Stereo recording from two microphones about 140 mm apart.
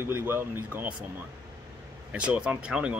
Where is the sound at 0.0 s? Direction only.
15° right (ahead or behind).